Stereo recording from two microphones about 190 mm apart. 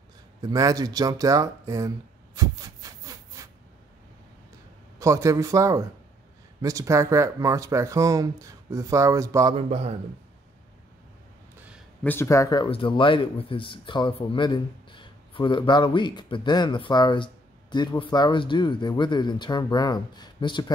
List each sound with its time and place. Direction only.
0.4 s speech: 20° right (ahead or behind)
2.3 s a sound: 20° right (ahead or behind)
4.9 s speech: 15° right (ahead or behind)
9.6 s speech: 35° right (ahead or behind)
12.0 s speech: 10° left (ahead or behind)